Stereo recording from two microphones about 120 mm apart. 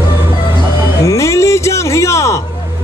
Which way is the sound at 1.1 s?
25° left (ahead or behind).